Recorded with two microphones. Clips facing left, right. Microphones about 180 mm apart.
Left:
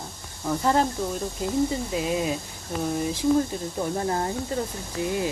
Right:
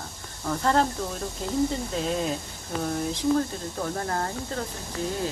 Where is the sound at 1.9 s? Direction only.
5° left (ahead or behind).